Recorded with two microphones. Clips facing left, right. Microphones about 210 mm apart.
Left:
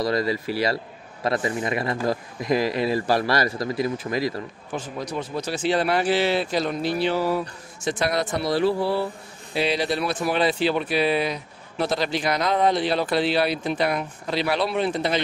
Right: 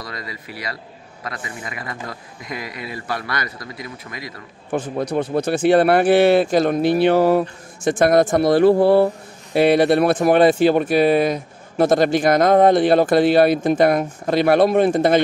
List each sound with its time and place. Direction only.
0.1 s a man's voice: 30° left (ahead or behind)
4.7 s speech: 55° right (ahead or behind)